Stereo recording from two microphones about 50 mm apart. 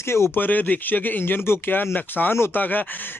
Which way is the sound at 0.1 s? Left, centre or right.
Left.